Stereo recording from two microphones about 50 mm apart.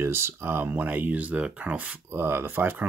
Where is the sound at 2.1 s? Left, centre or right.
Right.